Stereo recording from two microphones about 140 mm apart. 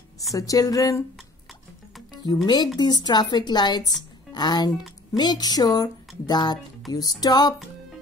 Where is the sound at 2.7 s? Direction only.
30° left (ahead or behind).